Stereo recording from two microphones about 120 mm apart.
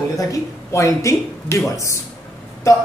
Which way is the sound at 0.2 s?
25° left (ahead or behind).